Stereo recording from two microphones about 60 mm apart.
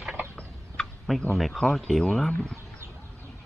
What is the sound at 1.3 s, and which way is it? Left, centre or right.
Speech, centre.